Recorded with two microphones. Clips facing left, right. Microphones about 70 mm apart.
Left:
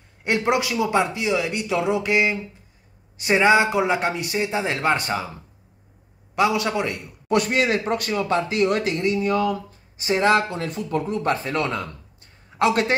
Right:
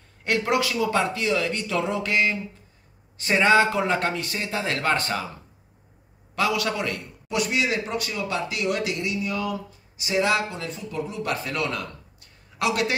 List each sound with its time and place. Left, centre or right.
0.2 s speech: left
6.3 s a man's voice: left
7.2 s speech: left
11.2 s a man's voice: left